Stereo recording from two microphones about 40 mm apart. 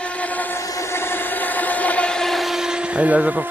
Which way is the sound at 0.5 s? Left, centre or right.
Left.